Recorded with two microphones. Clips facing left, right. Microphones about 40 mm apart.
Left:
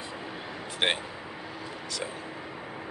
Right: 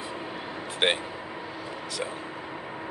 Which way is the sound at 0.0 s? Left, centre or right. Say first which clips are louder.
Right 3 dB; centre.